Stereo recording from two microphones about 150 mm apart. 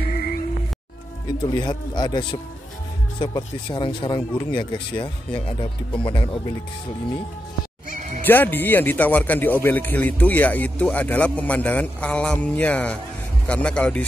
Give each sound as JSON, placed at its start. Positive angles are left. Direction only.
{"t": 0.0, "sound": "music", "side_deg": 75}
{"t": 1.4, "sound": "speech", "side_deg": 30}
{"t": 7.9, "sound": "music", "side_deg": -55}
{"t": 8.3, "sound": "a man's voice", "side_deg": 15}